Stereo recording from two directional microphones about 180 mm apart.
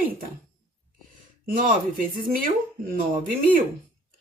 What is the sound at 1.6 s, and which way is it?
Speech, 50° right (ahead or behind).